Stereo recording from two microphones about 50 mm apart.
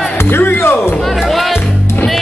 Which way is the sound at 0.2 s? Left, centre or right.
Left.